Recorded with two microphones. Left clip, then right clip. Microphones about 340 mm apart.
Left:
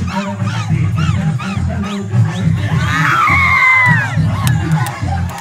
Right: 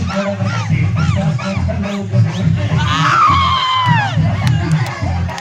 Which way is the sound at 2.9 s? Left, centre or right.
Centre.